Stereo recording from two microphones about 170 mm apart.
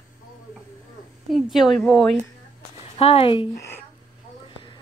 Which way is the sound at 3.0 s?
35° left (ahead or behind).